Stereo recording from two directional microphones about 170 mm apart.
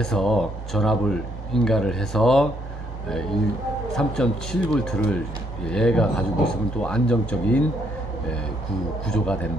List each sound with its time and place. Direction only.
0.0 s speech: 5° left (ahead or behind)
3.9 s speech: 5° left (ahead or behind)
9.0 s speech: 5° left (ahead or behind)